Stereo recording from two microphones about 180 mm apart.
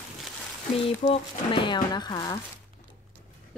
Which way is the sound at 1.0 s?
25° left (ahead or behind).